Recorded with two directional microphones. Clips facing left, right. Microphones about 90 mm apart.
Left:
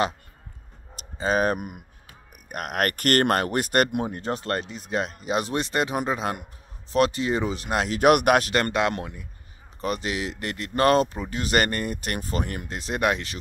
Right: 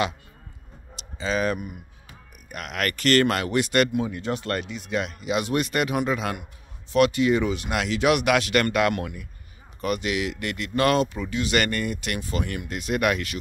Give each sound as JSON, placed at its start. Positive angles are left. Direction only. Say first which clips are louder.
{"t": 0.9, "sound": "speech", "louder": "left 3 dB", "side_deg": 45}
{"t": 8.5, "sound": "speech", "louder": "right 2 dB", "side_deg": 25}